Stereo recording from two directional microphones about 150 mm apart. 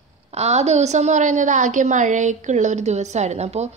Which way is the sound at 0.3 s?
45° right (ahead or behind).